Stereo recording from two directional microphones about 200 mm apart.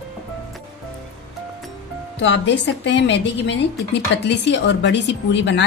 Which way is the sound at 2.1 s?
65° left (ahead or behind).